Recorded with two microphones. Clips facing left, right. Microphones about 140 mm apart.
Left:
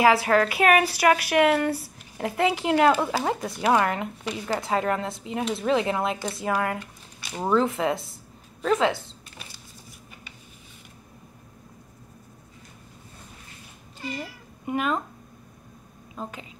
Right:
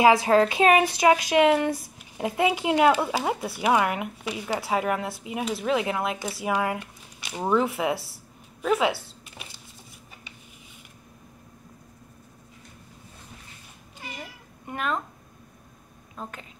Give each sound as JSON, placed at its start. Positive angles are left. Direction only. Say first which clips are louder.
{"t": 0.0, "sound": "a woman's voice", "louder": "right 1 dB", "side_deg": -20}
{"t": 6.5, "sound": "a sound", "louder": "right 1 dB", "side_deg": -20}
{"t": 7.4, "sound": "a woman's voice", "louder": "left 1 dB", "side_deg": -10}
{"t": 14.7, "sound": "speech", "louder": "left 4 dB", "side_deg": 5}
{"t": 16.2, "sound": "speech", "louder": "left 2 dB", "side_deg": 0}